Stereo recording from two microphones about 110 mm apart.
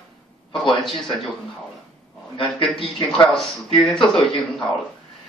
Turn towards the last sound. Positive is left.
turn(degrees=5)  # may be behind; listen again after turning